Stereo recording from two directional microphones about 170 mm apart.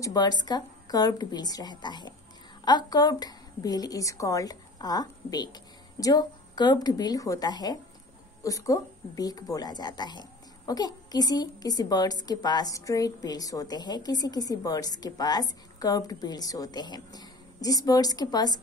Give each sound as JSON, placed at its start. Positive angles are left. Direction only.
{"t": 0.0, "sound": "a woman's voice", "side_deg": 25}